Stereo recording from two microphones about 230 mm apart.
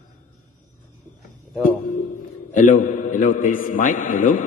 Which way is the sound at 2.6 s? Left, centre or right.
Left.